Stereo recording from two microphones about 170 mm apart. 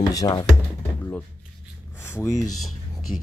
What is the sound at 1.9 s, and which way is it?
Speech, 15° left (ahead or behind).